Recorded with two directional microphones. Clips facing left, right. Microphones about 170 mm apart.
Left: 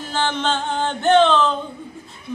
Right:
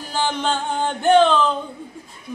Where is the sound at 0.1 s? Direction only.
10° right (ahead or behind).